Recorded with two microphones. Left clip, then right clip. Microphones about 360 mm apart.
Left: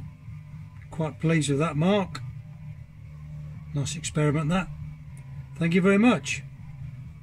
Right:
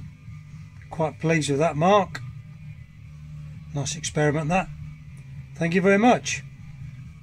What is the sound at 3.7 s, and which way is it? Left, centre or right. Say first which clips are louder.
Speech: right 4 dB; centre.